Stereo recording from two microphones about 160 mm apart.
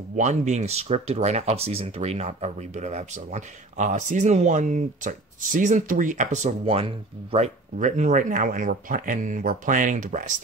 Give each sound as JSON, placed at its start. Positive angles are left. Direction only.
{"t": 0.1, "sound": "speech", "side_deg": -45}